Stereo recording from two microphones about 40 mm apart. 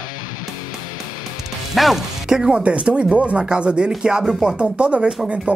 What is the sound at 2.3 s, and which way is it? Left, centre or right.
Speech, centre.